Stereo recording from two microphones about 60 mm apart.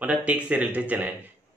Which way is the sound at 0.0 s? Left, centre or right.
Right.